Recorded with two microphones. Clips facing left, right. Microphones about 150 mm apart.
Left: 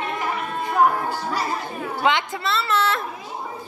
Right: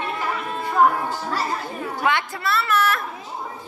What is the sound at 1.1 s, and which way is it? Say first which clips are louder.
Music: even; 15° left (ahead or behind).